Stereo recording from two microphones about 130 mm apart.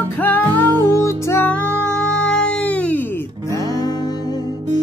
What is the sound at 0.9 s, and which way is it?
Music, 20° left (ahead or behind).